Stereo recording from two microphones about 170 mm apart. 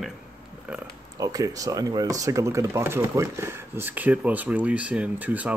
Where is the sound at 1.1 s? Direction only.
20° right (ahead or behind).